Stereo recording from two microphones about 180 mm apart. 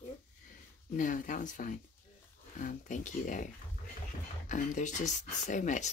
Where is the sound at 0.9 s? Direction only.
45° left (ahead or behind).